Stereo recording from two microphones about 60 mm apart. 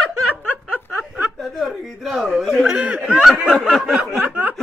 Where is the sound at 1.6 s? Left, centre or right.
Centre.